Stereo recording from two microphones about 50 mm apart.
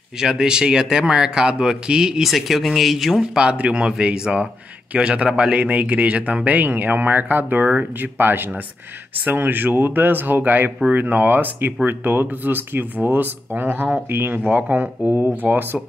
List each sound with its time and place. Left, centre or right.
0.2 s speech: centre
2.2 s speech: centre
3.2 s speech: centre; by 14.4 s right
14.5 s speech: right